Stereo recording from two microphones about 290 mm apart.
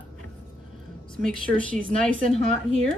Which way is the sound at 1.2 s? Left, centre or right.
Centre.